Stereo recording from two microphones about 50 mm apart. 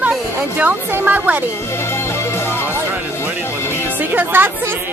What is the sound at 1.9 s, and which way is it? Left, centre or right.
Music, left.